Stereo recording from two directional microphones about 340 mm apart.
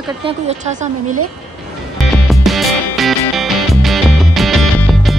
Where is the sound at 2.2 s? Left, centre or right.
Centre.